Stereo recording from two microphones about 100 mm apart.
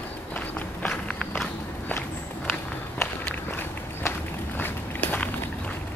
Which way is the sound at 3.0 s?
20° left (ahead or behind).